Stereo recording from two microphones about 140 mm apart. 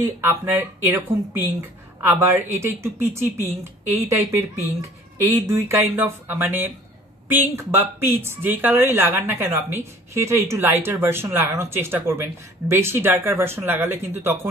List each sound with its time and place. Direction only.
0.0 s speech: 20° right (ahead or behind)
5.5 s speech: 20° right (ahead or behind)